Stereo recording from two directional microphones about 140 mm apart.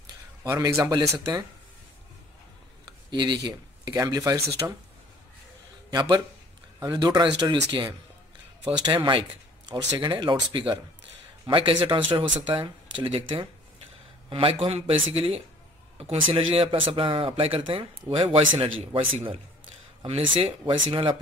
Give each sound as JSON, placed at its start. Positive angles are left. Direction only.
{"t": 0.4, "sound": "speech", "side_deg": -20}
{"t": 3.1, "sound": "speech", "side_deg": -35}
{"t": 5.9, "sound": "speech", "side_deg": -30}